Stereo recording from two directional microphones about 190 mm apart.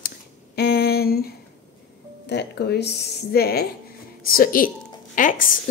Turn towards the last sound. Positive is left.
turn(degrees=45)  # may be behind; listen again after turning